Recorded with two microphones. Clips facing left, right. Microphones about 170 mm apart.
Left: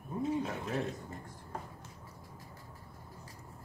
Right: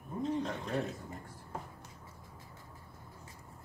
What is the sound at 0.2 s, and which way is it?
Bird, 5° left (ahead or behind).